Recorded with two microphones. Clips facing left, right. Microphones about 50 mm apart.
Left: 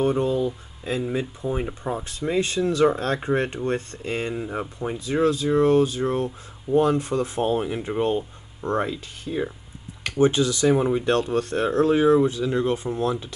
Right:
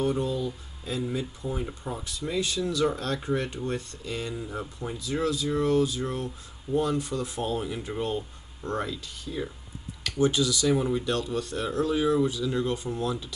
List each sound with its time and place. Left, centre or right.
0.0 s speech: left